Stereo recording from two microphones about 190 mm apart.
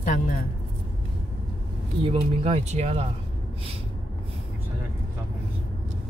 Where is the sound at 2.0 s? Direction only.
30° right (ahead or behind).